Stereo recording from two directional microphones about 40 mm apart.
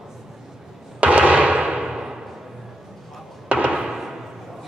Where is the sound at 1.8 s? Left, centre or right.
Centre.